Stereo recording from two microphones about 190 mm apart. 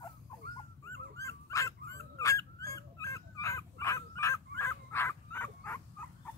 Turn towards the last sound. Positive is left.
turn(degrees=10)  # may be behind; listen again after turning